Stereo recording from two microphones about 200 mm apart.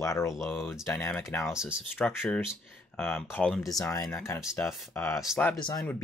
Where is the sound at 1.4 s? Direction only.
5° right (ahead or behind).